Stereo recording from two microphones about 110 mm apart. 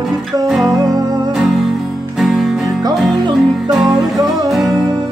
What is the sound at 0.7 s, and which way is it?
Music, 35° right (ahead or behind).